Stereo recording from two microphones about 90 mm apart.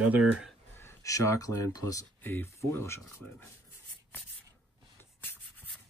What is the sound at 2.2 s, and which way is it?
Speech, 25° left (ahead or behind).